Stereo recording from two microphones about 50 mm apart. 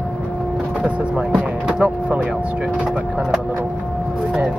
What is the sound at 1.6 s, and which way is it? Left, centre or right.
Speech, right.